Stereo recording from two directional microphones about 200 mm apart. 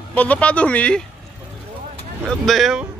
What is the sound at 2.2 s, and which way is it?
Speech, centre (ahead or behind).